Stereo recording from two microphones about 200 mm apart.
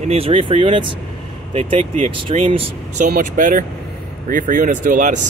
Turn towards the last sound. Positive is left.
turn(degrees=-40)  # may be behind; listen again after turning